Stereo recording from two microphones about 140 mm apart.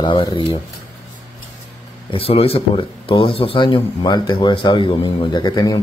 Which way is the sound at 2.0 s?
45° left (ahead or behind).